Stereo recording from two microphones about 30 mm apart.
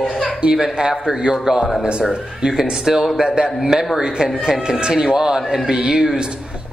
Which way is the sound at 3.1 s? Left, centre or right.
Right.